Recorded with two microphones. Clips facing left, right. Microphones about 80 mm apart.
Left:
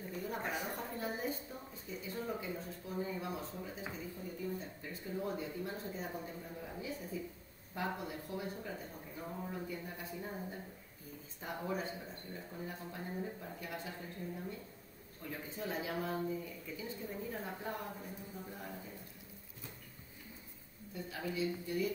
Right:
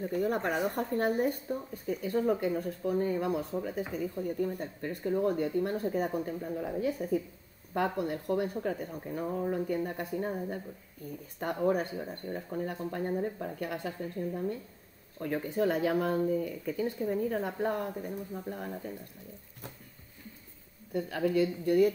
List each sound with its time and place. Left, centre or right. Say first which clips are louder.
0.1 s speech: right 9 dB; right
20.9 s speech: right 12 dB; right